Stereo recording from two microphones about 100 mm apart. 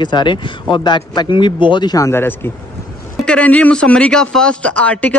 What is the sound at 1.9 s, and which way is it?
Speech, 25° left (ahead or behind).